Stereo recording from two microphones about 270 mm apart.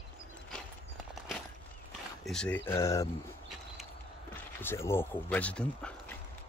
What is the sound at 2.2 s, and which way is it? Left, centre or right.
Speech, centre.